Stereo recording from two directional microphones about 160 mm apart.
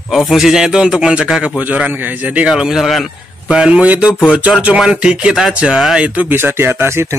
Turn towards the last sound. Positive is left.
turn(degrees=-15)  # may be behind; listen again after turning